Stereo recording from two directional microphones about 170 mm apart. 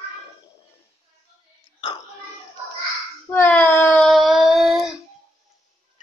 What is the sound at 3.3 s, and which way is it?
Speech, 10° left (ahead or behind).